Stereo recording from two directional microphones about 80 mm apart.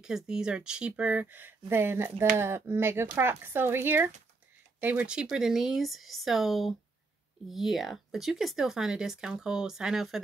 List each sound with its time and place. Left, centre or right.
0.0 s speech: centre